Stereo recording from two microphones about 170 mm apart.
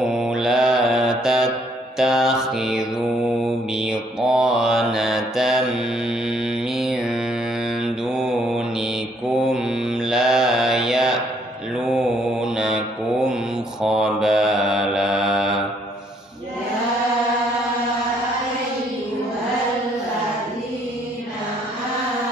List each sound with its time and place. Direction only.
0.0 s mantra: 5° right (ahead or behind)
6.8 s mantra: centre (ahead or behind)
13.8 s mantra: 5° right (ahead or behind)